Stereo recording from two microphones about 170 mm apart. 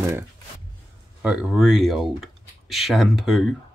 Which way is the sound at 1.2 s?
5° right (ahead or behind).